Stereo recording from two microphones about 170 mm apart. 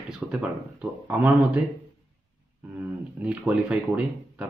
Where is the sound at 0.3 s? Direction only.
5° right (ahead or behind).